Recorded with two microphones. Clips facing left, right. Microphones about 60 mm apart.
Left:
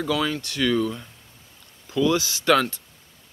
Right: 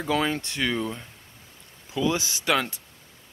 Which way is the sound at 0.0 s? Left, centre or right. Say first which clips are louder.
Left 1 dB; right.